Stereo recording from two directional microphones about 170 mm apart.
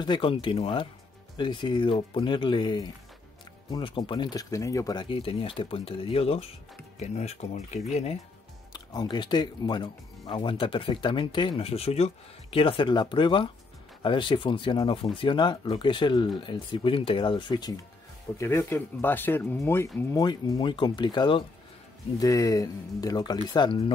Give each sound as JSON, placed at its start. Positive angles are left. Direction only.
{"t": 0.0, "sound": "speech", "side_deg": 30}
{"t": 8.7, "sound": "speech", "side_deg": 25}